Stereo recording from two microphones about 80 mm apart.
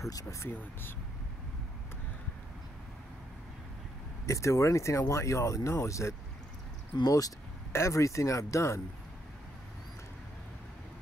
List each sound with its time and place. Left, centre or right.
0.1 s speech: left
4.3 s speech: left